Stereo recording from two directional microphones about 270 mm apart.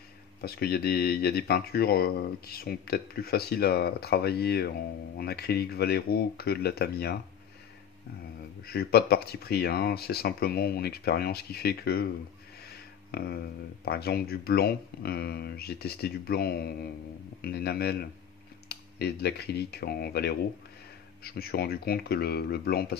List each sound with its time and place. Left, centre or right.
0.4 s speech: left
8.6 s speech: left
12.6 s a sound: left
13.8 s speech: left